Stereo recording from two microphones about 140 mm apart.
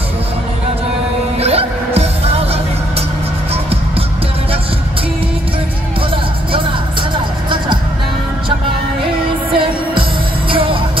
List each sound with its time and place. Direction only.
1.4 s music: 45° right (ahead or behind)
6.5 s music: 35° right (ahead or behind)
10.5 s music: 40° right (ahead or behind)